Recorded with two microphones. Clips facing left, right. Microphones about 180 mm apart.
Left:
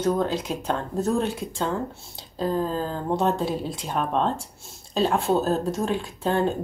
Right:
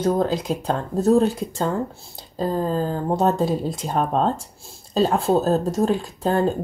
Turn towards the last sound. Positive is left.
turn(degrees=-40)  # may be behind; listen again after turning